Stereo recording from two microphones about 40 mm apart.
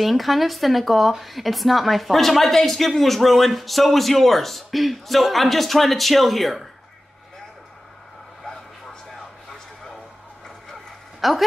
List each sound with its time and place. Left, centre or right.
0.0 s speech: centre
11.1 s speech: centre